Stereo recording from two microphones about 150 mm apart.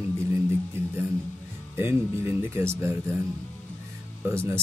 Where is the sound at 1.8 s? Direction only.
15° right (ahead or behind).